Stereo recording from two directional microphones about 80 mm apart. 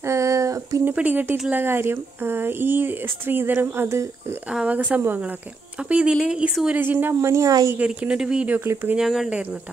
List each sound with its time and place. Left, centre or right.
0.0 s a sound: right
0.9 s speech: right
4.5 s a woman's voice: centre
7.2 s speech: right
7.7 s a woman's voice: centre
9.3 s a woman's voice: centre